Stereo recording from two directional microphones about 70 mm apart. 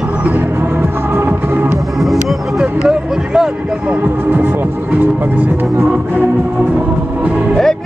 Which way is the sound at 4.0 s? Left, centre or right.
Right.